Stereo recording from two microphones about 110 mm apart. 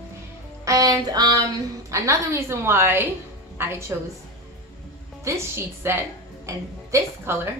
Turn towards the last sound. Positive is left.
turn(degrees=-25)  # may be behind; listen again after turning